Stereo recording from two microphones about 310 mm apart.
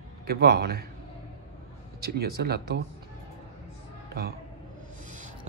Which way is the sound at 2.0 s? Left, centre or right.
Right.